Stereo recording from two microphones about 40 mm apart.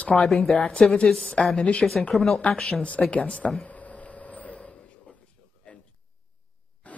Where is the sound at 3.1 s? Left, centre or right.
Left.